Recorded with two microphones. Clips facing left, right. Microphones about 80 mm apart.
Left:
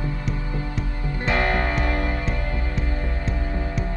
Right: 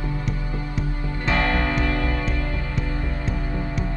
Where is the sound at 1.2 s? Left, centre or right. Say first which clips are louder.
Even; left.